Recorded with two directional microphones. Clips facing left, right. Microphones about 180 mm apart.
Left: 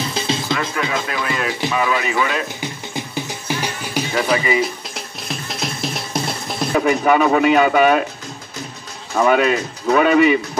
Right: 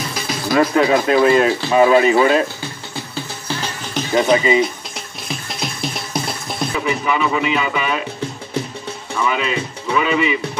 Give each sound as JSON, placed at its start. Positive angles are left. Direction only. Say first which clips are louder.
{"t": 0.1, "sound": "music", "louder": "even", "side_deg": 25}
{"t": 0.6, "sound": "speech", "louder": "right 9 dB", "side_deg": -30}
{"t": 2.6, "sound": "music", "louder": "left 2 dB", "side_deg": 15}
{"t": 4.1, "sound": "speech", "louder": "right 5 dB", "side_deg": -25}
{"t": 4.9, "sound": "music", "louder": "even", "side_deg": 0}
{"t": 6.7, "sound": "a man's voice", "louder": "left 6 dB", "side_deg": 50}
{"t": 9.1, "sound": "a man's voice", "louder": "left 6 dB", "side_deg": 45}